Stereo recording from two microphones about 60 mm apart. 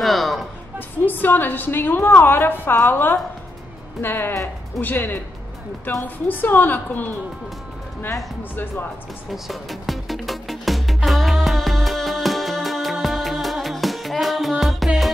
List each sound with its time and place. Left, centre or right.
0.0 s music: centre
0.7 s a woman's voice: left
9.3 s music: centre